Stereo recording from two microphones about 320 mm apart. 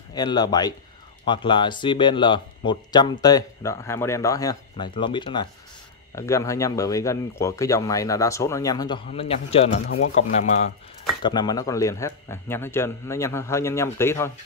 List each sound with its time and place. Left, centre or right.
0.1 s speech: centre